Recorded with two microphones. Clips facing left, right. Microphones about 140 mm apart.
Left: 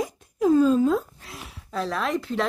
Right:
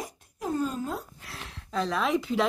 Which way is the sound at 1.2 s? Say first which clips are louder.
Left 2 dB; 10° left (ahead or behind).